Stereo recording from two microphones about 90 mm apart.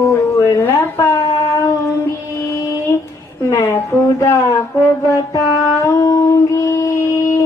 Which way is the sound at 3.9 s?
30° left (ahead or behind).